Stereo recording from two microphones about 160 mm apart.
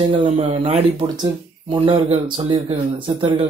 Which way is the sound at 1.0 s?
25° right (ahead or behind).